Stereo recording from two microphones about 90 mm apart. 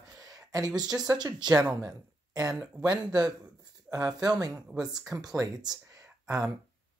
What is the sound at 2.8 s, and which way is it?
Speech, 40° right (ahead or behind).